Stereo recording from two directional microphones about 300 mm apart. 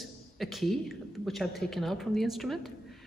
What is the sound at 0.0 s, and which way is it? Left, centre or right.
A woman's voice, centre.